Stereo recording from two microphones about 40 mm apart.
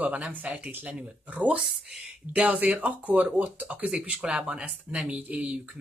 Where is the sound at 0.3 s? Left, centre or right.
Right.